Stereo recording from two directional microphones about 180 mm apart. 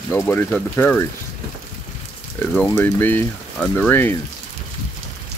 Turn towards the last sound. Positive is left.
turn(degrees=10)  # may be behind; listen again after turning